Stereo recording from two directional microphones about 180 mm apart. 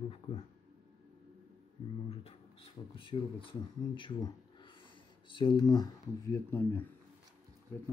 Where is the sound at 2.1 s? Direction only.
35° left (ahead or behind).